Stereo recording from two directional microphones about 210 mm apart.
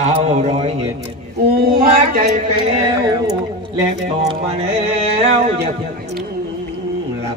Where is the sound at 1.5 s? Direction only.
45° right (ahead or behind).